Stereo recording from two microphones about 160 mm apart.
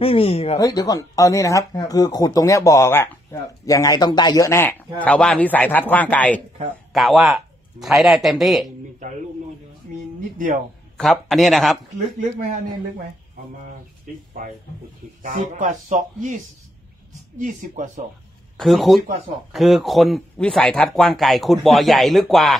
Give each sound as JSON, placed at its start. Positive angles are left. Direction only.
{"t": 0.0, "sound": "speech", "side_deg": 35}
{"t": 0.6, "sound": "a man's voice", "side_deg": 20}
{"t": 10.3, "sound": "speech", "side_deg": -55}
{"t": 11.0, "sound": "speech", "side_deg": 0}
{"t": 14.4, "sound": "speech", "side_deg": -60}
{"t": 17.4, "sound": "speech", "side_deg": -55}
{"t": 18.6, "sound": "speech", "side_deg": 0}